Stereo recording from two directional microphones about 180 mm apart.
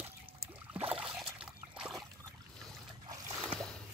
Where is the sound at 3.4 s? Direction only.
Centre (ahead or behind).